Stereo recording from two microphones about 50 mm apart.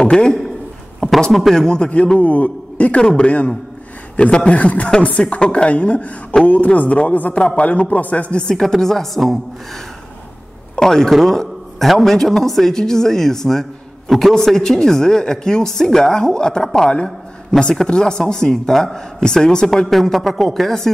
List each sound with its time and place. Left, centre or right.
0.0 s a man's voice: centre
1.0 s speech: centre
1.5 s a man's voice: centre
1.8 s speech: left
8.5 s speech: centre
10.8 s a man's voice: centre
19.9 s speech: centre